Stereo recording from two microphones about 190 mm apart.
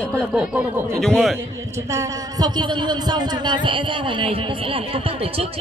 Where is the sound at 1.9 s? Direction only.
15° right (ahead or behind).